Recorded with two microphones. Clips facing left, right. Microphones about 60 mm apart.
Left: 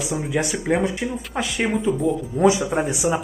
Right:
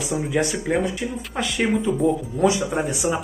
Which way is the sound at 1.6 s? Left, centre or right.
Centre.